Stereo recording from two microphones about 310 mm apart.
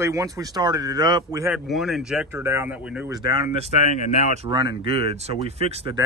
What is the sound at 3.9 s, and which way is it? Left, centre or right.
Speech, left.